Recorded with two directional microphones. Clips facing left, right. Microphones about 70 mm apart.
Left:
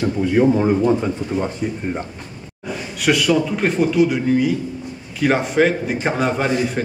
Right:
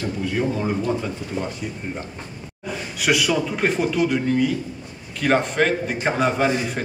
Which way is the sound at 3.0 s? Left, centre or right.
Centre.